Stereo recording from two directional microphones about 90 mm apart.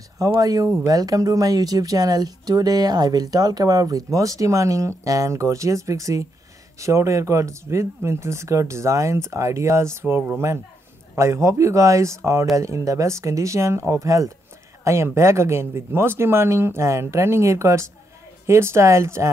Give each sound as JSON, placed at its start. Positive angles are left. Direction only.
{"t": 0.4, "sound": "speech", "side_deg": -40}